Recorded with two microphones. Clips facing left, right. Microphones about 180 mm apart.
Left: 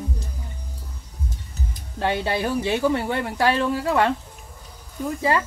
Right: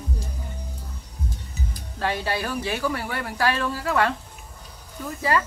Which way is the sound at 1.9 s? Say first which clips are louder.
Left 3 dB; 20° left (ahead or behind).